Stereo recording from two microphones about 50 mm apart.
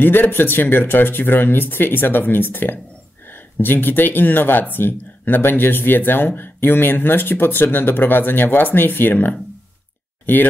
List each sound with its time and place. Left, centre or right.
0.0 s speech: left